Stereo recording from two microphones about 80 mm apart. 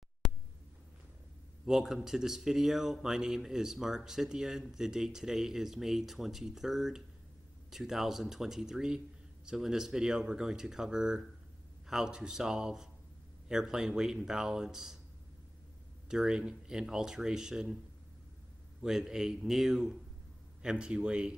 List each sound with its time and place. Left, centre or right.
0.2 s a sound: centre
1.7 s speech: centre
16.1 s speech: centre
18.8 s speech: centre